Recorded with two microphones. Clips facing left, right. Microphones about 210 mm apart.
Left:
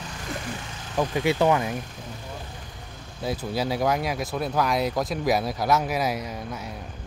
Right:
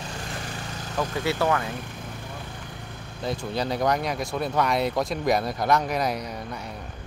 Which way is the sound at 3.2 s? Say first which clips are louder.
Left 1 dB; 5° left (ahead or behind).